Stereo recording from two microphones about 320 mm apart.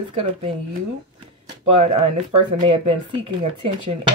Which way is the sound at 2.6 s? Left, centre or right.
Centre.